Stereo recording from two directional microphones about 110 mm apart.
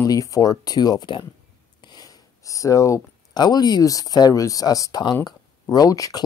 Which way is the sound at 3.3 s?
40° left (ahead or behind).